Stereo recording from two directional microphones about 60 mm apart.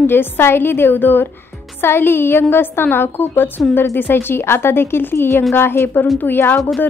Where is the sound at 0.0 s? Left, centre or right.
Left.